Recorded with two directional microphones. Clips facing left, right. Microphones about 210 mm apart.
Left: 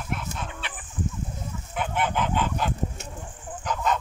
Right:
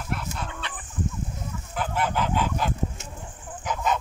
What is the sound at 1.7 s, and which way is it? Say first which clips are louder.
Fowl: even; centre (ahead or behind).